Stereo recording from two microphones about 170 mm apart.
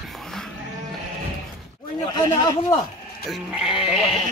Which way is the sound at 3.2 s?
Centre (ahead or behind).